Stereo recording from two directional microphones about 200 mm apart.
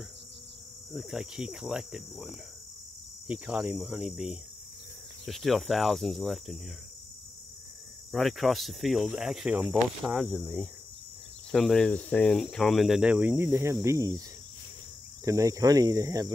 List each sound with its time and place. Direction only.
0.9 s speech: 5° right (ahead or behind)
8.1 s speech: centre (ahead or behind); by 14.1 s 15° right (ahead or behind)
15.2 s speech: 15° right (ahead or behind)